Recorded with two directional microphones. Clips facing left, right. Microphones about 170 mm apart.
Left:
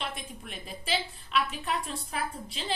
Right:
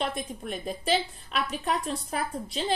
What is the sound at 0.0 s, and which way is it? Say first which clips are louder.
A woman's voice: right 7 dB; 40° right (ahead or behind).